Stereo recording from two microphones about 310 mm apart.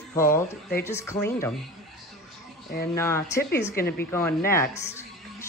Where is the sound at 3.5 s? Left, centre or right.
Left.